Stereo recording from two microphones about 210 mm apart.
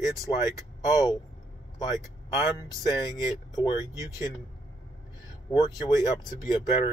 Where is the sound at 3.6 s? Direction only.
20° left (ahead or behind).